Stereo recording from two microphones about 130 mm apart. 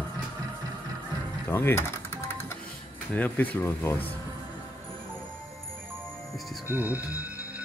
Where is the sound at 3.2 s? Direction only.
15° left (ahead or behind).